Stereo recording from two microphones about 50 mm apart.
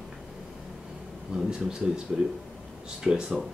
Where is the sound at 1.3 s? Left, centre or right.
Centre.